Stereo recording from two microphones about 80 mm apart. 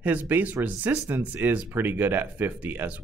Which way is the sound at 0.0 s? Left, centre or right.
Right.